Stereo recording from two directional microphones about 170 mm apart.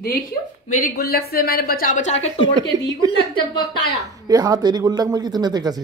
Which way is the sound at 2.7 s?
20° right (ahead or behind).